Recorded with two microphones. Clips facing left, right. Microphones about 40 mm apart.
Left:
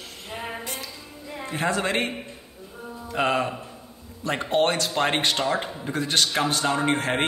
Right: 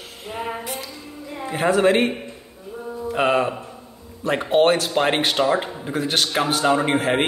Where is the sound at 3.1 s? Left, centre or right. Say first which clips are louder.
Right 4 dB; centre.